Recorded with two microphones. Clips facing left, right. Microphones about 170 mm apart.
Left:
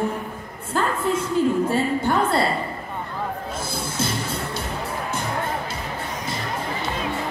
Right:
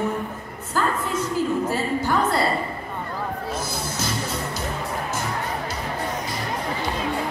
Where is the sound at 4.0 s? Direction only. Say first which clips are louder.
Left 2 dB; 30° left (ahead or behind).